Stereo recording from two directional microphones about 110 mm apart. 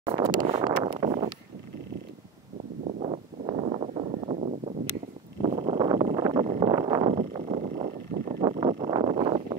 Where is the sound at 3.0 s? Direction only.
65° right (ahead or behind); by 4.7 s 80° right.